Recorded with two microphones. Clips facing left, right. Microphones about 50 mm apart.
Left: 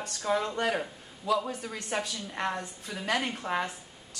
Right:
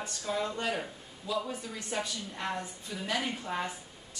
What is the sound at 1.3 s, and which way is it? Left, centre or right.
Speech, left.